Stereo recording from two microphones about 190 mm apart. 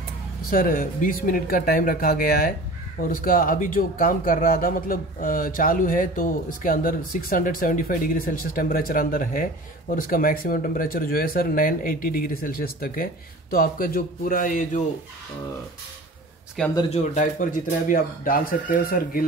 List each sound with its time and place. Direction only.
0.5 s speech: 50° left (ahead or behind)
16.6 s speech: centre (ahead or behind)
16.9 s speech: 40° left (ahead or behind)